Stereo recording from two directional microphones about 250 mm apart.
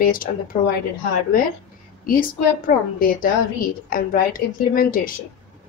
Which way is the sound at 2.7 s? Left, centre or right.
Left.